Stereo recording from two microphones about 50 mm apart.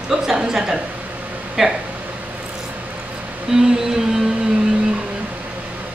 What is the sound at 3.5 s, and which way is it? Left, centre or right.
Speech, centre.